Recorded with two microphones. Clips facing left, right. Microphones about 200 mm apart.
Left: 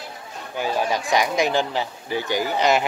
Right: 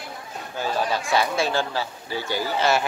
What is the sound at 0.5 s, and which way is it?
Speech, 15° left (ahead or behind).